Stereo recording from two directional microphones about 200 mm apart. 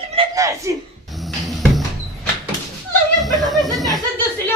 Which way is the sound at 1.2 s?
Centre (ahead or behind).